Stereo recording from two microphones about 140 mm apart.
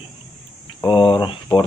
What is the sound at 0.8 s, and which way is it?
Speech, 30° left (ahead or behind).